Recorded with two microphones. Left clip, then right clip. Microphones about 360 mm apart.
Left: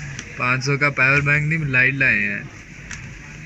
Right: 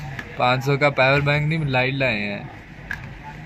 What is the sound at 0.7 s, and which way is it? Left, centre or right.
Speech, centre.